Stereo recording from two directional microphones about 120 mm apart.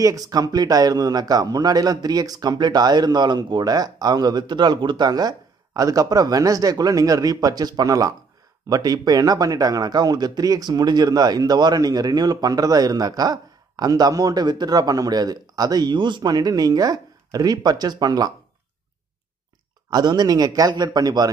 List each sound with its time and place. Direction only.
0.0 s speech: 30° right (ahead or behind)
19.9 s speech: 35° right (ahead or behind)